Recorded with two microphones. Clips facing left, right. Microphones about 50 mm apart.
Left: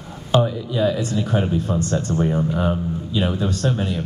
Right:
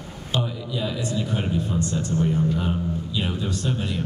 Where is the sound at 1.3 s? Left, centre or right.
Left.